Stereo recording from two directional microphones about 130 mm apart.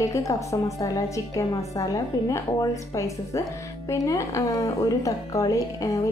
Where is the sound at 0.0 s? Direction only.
25° left (ahead or behind).